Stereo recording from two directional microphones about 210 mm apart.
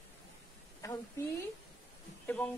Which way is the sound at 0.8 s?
15° left (ahead or behind).